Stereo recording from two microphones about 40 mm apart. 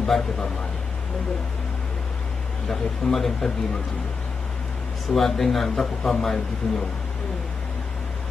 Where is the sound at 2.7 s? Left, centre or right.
Centre.